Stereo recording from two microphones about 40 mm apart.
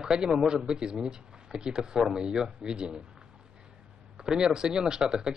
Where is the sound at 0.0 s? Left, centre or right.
Centre.